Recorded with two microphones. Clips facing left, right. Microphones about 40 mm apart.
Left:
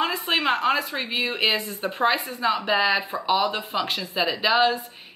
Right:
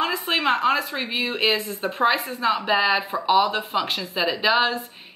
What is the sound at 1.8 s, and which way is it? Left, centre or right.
A woman's voice, centre.